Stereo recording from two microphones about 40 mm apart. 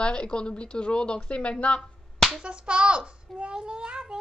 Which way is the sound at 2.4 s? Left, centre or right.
Right.